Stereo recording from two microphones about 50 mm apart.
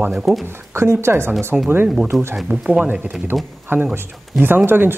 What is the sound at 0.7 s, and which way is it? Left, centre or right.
Speech, right.